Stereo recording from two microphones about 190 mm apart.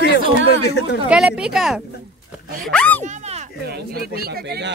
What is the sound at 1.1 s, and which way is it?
Speech, 5° right (ahead or behind).